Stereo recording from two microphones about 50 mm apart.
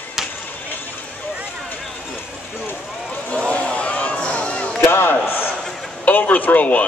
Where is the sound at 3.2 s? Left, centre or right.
Left.